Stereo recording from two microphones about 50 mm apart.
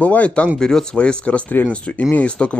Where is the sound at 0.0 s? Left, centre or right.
Left.